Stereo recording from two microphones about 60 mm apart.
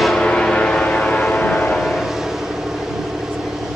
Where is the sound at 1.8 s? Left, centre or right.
Centre.